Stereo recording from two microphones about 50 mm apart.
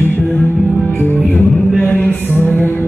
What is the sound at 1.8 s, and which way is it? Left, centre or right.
Music, left.